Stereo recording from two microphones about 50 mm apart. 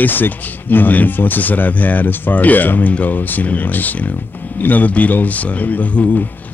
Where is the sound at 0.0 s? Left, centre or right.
Left.